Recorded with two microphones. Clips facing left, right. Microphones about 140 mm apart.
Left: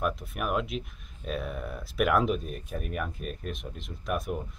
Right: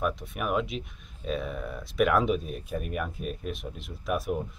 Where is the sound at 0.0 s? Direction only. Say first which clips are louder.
Right 1 dB; centre (ahead or behind).